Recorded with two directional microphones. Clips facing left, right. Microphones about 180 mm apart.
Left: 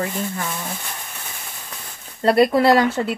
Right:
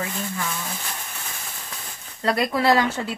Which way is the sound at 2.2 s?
30° left (ahead or behind).